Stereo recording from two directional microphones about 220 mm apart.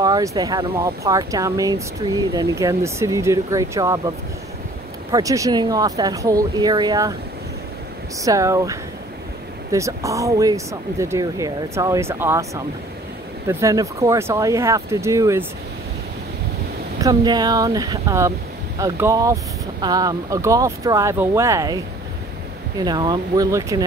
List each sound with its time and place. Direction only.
0.0 s speech: 15° right (ahead or behind)
5.1 s speech: 15° right (ahead or behind)
8.2 s speech: 15° right (ahead or behind)
13.5 s speech: 15° right (ahead or behind)
17.0 s speech: 15° right (ahead or behind)